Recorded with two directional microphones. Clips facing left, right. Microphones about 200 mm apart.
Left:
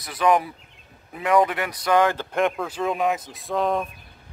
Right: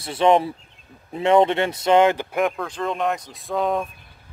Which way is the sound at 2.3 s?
Centre (ahead or behind).